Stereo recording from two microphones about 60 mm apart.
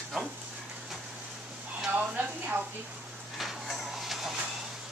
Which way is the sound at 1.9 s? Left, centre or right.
Right.